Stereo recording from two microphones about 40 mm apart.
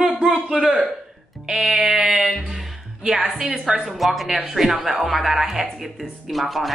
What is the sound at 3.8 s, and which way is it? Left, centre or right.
Speech, centre.